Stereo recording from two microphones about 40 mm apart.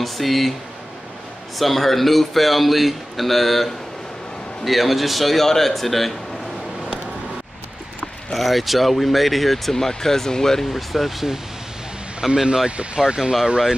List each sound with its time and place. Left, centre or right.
0.0 s speech: centre
1.6 s speech: centre
8.4 s speech: centre
12.6 s speech: right